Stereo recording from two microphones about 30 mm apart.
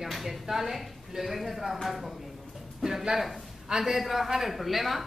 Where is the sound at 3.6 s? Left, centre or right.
Right.